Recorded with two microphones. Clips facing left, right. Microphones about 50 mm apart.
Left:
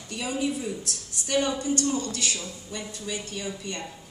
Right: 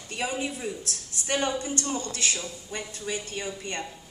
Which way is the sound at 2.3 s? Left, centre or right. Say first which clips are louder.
Right 1 dB; right.